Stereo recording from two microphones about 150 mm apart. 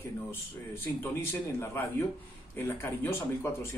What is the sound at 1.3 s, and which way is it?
Speech, 15° left (ahead or behind).